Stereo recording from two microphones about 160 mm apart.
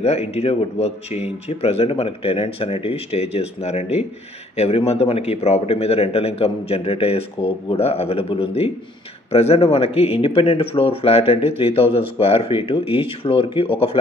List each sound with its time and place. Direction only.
0.0 s speech: 40° left (ahead or behind)